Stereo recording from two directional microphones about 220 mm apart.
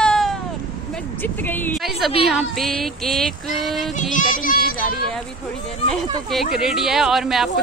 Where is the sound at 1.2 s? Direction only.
10° left (ahead or behind).